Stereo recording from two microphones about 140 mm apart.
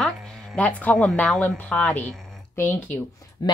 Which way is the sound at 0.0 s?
5° left (ahead or behind).